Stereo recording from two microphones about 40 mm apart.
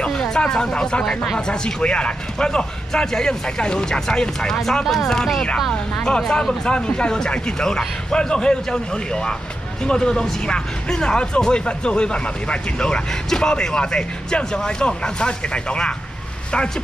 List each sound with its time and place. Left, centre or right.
0.1 s a man's voice: centre
4.8 s speech: centre
5.7 s a man's voice: left